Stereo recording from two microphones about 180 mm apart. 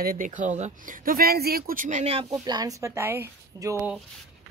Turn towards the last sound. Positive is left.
turn(degrees=-15)  # may be behind; listen again after turning